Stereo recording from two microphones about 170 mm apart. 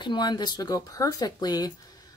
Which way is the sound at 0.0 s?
25° left (ahead or behind).